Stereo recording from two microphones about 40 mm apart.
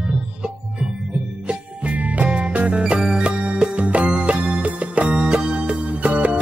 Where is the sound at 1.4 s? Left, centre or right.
Right.